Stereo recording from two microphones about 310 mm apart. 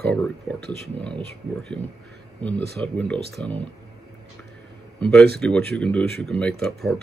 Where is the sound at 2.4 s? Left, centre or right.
Centre.